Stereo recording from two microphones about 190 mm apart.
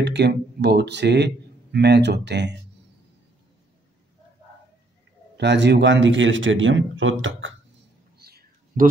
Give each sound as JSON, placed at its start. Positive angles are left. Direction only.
{"t": 0.0, "sound": "a man's voice", "side_deg": -60}
{"t": 5.4, "sound": "speech", "side_deg": -65}
{"t": 8.2, "sound": "a sound", "side_deg": -55}